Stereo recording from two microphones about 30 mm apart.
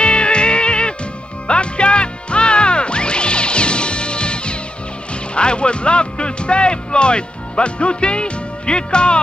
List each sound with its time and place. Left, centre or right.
0.0 s music: left